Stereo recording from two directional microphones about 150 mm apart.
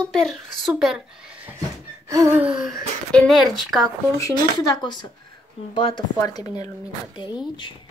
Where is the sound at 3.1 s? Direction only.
5° left (ahead or behind).